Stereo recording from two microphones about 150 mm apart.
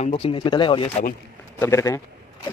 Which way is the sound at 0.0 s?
35° left (ahead or behind).